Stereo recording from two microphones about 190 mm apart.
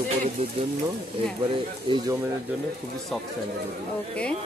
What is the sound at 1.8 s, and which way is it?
Speech, 25° right (ahead or behind).